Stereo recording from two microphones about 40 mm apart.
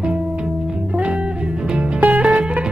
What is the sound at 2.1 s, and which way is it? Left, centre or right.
Music, right.